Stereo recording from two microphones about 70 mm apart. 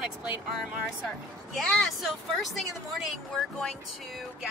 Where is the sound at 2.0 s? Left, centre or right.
Centre.